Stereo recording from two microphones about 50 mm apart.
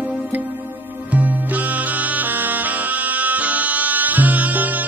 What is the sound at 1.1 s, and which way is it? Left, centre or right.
Music, right.